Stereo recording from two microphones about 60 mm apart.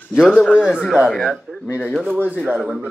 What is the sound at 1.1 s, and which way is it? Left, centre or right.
Speech, centre.